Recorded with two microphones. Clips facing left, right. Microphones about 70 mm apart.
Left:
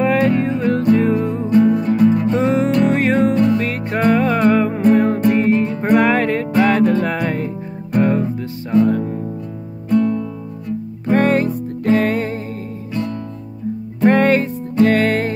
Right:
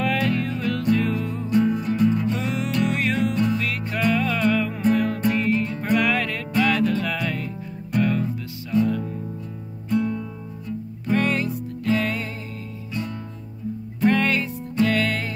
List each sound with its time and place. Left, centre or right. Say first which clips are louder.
0.0 s music: left 8 dB; left
11.1 s music: left 7 dB; left
14.0 s music: left 7 dB; left